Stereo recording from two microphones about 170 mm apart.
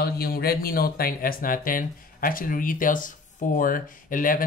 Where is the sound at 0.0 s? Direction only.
65° left (ahead or behind).